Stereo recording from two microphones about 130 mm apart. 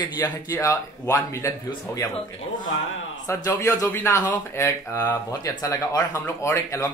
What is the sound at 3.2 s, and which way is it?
Speech, 20° left (ahead or behind).